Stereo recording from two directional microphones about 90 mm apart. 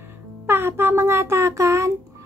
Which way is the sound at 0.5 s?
25° right (ahead or behind).